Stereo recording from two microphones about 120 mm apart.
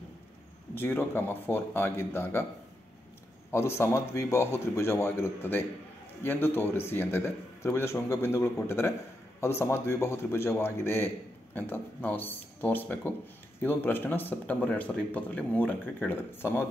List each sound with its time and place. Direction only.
0.7 s a man's voice: 15° left (ahead or behind)
3.5 s a man's voice: 20° left (ahead or behind)